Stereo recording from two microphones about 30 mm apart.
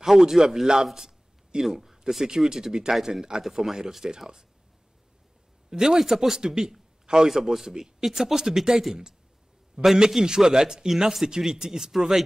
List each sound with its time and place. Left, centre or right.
0.0 s a man's voice: centre
5.7 s a man's voice: centre
9.9 s speech: right